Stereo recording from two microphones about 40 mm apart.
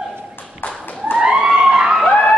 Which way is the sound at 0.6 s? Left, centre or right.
Left.